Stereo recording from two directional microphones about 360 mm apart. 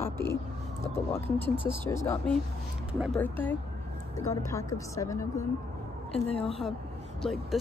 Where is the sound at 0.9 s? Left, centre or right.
Centre.